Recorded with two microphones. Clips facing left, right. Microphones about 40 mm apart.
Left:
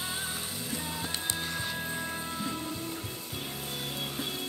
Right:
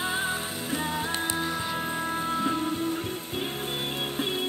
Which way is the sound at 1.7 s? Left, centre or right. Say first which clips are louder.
Right 6 dB; right.